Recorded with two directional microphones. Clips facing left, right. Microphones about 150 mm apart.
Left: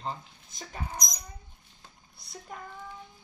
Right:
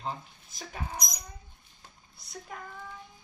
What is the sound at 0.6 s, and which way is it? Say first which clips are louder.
Speech: even; 5° right (ahead or behind).